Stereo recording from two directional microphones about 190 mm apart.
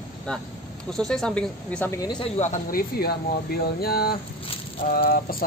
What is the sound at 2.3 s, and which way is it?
Speech, 40° left (ahead or behind).